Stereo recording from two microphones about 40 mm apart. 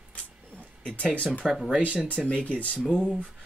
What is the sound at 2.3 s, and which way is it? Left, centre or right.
Speech, left.